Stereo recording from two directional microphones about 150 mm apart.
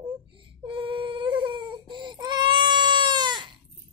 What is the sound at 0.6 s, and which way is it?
Baby cry, 35° right (ahead or behind).